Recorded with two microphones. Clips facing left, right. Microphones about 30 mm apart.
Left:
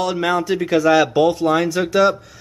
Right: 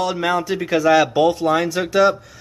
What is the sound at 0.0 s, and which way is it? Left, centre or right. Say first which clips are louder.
Speech: left 1 dB; centre.